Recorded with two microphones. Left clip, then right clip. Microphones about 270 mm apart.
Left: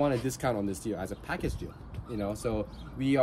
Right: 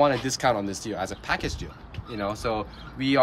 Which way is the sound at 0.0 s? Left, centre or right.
Centre.